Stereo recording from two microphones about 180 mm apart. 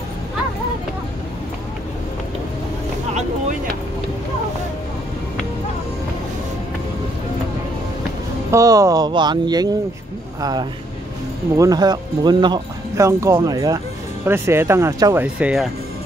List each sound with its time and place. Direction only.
8.5 s speech: 20° right (ahead or behind)
15.2 s speech: 5° right (ahead or behind)